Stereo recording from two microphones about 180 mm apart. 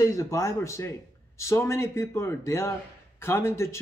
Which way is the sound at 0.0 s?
20° left (ahead or behind).